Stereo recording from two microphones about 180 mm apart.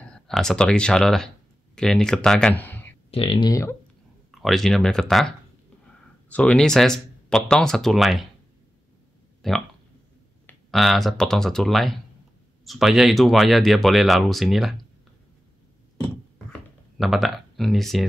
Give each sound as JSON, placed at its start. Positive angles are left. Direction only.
{"t": 0.3, "sound": "speech", "side_deg": 5}
{"t": 3.1, "sound": "speech", "side_deg": 30}
{"t": 4.3, "sound": "speech", "side_deg": 0}
{"t": 9.4, "sound": "speech", "side_deg": 5}
{"t": 17.0, "sound": "speech", "side_deg": 0}